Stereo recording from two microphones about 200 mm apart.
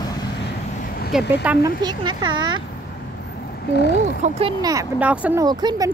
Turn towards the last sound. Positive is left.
turn(degrees=-20)  # may be behind; listen again after turning